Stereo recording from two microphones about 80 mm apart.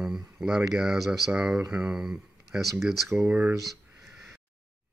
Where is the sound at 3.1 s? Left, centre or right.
Centre.